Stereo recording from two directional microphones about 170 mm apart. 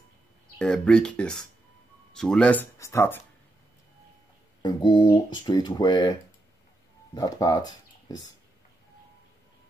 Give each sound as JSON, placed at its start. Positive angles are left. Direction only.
{"t": 0.6, "sound": "speech", "side_deg": 5}
{"t": 4.6, "sound": "speech", "side_deg": 25}
{"t": 7.2, "sound": "speech", "side_deg": 20}